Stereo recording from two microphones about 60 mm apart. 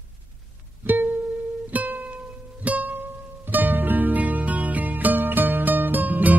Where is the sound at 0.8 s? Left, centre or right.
Right.